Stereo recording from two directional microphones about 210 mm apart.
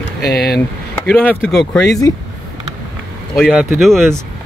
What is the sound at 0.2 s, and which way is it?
Speech, 50° left (ahead or behind).